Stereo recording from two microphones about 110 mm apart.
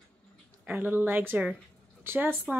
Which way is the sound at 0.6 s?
15° right (ahead or behind).